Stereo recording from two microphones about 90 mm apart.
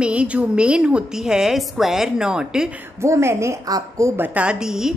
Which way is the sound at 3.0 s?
30° right (ahead or behind).